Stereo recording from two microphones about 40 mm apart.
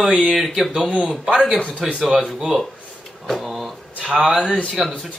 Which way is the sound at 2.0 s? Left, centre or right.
Centre.